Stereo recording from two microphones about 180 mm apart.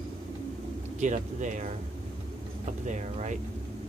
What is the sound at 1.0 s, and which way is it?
Speech, 40° right (ahead or behind).